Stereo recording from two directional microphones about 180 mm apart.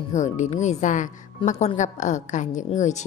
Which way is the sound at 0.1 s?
40° left (ahead or behind).